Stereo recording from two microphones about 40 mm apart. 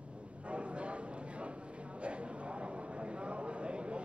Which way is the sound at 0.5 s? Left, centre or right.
Right.